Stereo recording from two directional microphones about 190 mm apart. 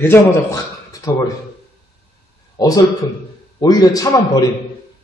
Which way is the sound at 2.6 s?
20° left (ahead or behind).